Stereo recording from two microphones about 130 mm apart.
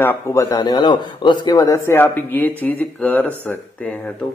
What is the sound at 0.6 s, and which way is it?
Speech, 35° left (ahead or behind).